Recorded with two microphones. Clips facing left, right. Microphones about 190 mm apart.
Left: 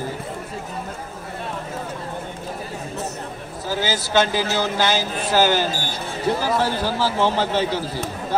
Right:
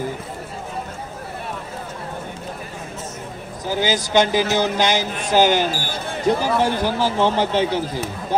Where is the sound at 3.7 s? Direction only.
15° right (ahead or behind).